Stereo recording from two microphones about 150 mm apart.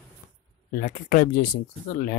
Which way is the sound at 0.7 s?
75° left (ahead or behind).